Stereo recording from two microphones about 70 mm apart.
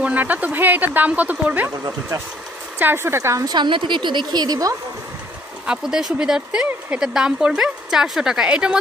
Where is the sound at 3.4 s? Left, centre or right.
Right.